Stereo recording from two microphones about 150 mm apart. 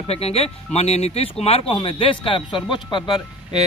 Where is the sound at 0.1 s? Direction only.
45° left (ahead or behind).